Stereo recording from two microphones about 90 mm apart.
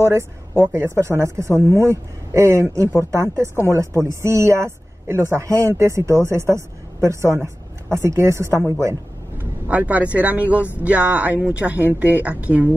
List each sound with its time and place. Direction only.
0.0 s a woman's voice: 25° right (ahead or behind)
9.4 s a woman's voice: 15° right (ahead or behind)